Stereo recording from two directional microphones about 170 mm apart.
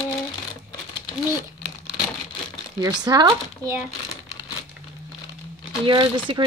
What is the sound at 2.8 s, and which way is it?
Speech, 25° right (ahead or behind).